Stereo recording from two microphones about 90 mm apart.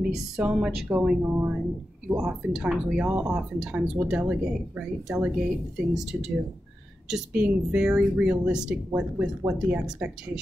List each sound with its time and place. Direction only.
0.0 s speech: 5° right (ahead or behind)
1.2 s speech: 25° right (ahead or behind)
2.0 s speech: 10° right (ahead or behind)